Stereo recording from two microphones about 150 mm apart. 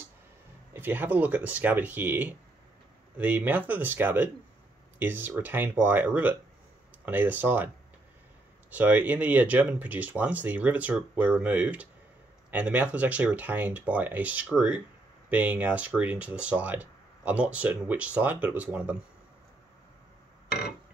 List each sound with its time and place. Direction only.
0.7 s speech: 10° right (ahead or behind)